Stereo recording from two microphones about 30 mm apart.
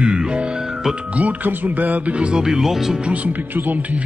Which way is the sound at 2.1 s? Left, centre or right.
Right.